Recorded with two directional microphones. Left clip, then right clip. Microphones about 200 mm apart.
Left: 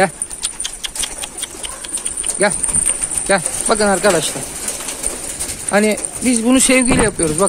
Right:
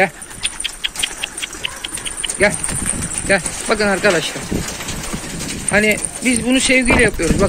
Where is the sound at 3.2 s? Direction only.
15° left (ahead or behind).